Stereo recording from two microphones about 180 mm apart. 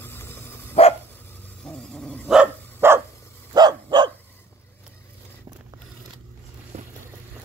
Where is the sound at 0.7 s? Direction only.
35° left (ahead or behind).